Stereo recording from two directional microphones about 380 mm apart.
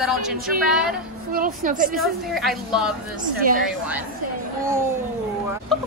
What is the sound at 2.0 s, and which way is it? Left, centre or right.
A woman's voice, centre.